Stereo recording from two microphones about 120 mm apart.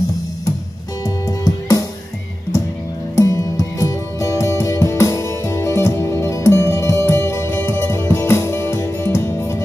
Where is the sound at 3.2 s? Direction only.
25° left (ahead or behind).